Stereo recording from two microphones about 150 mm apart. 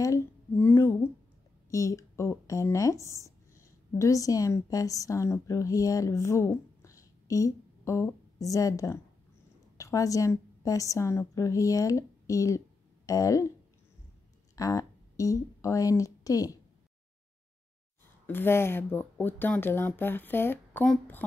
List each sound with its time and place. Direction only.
0.0 s a sound: 15° left (ahead or behind)
1.7 s a woman's voice: 20° left (ahead or behind)
14.5 s speech: 20° left (ahead or behind)
18.2 s speech: 15° left (ahead or behind)